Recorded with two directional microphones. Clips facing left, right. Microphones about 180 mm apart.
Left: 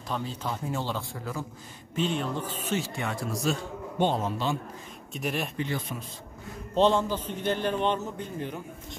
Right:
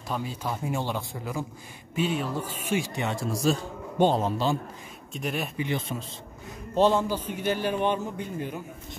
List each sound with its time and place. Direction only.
0.1 s a man's voice: 10° right (ahead or behind); by 3.5 s 25° right (ahead or behind)
4.0 s speech: 35° right (ahead or behind)
5.1 s speech: centre (ahead or behind)
5.6 s speech: 20° right (ahead or behind)
6.7 s a man's voice: 10° right (ahead or behind)